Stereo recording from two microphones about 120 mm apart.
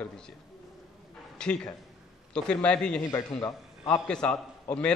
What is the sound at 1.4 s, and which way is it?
A man's voice, 5° left (ahead or behind).